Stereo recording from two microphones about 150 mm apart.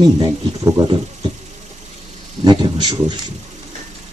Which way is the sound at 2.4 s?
30° right (ahead or behind).